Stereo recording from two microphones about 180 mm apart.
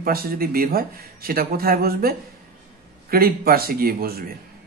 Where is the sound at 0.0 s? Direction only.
55° right (ahead or behind).